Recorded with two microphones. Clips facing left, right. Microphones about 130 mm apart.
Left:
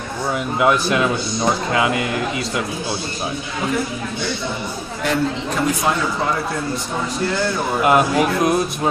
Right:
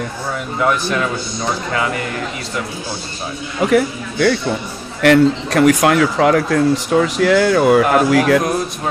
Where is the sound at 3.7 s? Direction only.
75° right (ahead or behind).